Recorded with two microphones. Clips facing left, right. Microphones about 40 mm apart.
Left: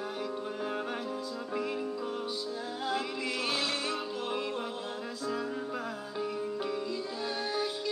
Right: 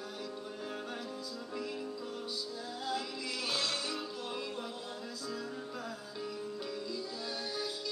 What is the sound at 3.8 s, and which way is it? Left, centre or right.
Music, left.